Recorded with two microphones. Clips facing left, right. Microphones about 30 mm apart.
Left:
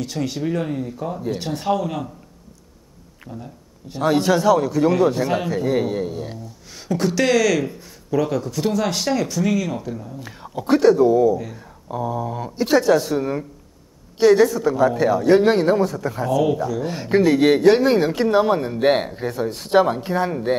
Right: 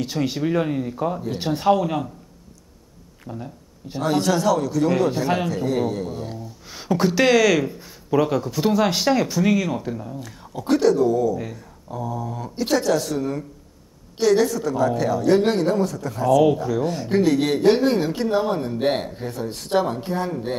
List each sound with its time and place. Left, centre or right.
0.0 s speech: centre
3.3 s speech: right
4.0 s a man's voice: centre
4.9 s speech: centre
5.7 s a man's voice: centre
6.1 s a sound: centre
6.7 s speech: centre
10.2 s whispering: left
10.7 s a man's voice: centre
16.3 s speech: centre
16.9 s a man's voice: left